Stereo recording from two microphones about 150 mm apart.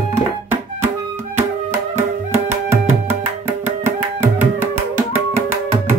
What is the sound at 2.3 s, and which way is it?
Music, 15° right (ahead or behind).